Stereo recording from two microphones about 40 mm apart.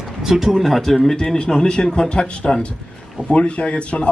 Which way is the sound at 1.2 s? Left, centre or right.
Centre.